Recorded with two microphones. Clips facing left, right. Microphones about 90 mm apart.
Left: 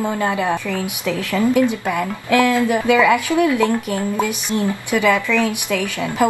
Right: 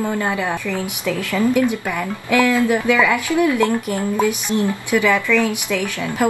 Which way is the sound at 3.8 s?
20° right (ahead or behind).